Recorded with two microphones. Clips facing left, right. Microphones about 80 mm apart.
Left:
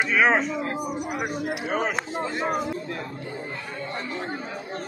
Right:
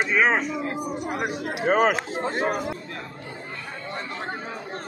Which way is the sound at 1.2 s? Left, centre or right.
Centre.